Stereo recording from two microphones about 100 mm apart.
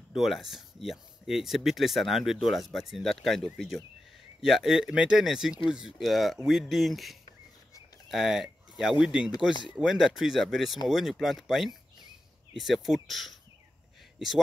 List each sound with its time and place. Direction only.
0.1 s speech: centre (ahead or behind)
4.5 s speech: 5° right (ahead or behind)
9.5 s speech: 50° left (ahead or behind)
9.8 s speech: 5° right (ahead or behind)